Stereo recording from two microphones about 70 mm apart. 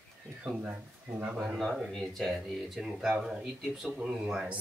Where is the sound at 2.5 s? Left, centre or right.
Centre.